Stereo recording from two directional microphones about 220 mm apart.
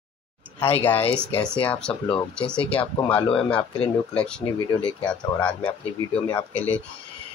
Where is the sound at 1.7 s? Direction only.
5° left (ahead or behind).